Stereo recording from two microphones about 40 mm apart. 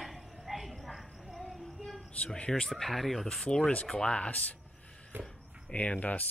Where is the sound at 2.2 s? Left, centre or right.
Left.